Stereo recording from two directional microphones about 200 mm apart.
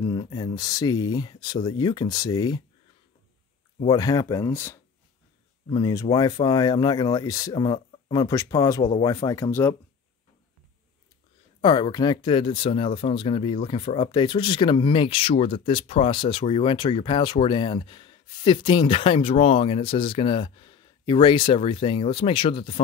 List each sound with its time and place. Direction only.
0.0 s speech: 20° left (ahead or behind)
3.8 s speech: 20° left (ahead or behind)
11.6 s speech: 25° left (ahead or behind)